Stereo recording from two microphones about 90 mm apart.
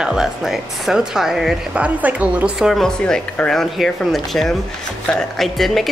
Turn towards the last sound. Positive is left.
turn(degrees=0)  # may be behind; listen again after turning